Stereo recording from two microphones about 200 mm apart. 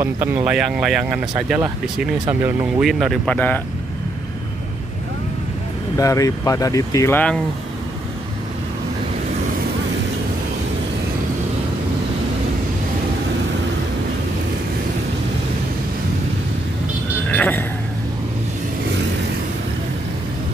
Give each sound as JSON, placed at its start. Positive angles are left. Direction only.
{"t": 0.0, "sound": "speech", "side_deg": -10}
{"t": 5.9, "sound": "speech", "side_deg": 15}
{"t": 17.3, "sound": "a sound", "side_deg": 10}